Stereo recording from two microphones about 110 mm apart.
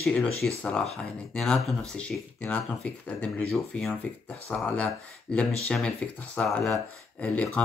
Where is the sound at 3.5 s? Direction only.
Centre (ahead or behind).